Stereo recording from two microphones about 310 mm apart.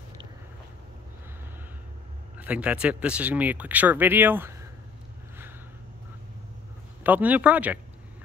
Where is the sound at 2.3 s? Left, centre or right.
Centre.